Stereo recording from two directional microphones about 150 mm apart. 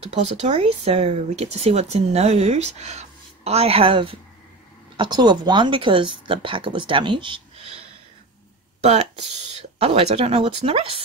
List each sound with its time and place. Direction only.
0.1 s speech: 45° right (ahead or behind)